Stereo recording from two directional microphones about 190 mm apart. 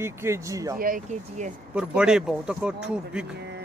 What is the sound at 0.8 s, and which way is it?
Speech, 45° right (ahead or behind).